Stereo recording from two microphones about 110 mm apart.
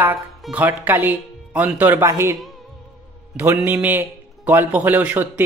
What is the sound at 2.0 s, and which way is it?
Speech, 25° right (ahead or behind).